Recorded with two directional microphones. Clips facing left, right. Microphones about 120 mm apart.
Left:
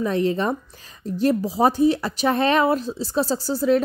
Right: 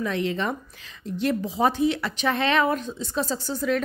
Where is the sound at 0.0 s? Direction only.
40° left (ahead or behind).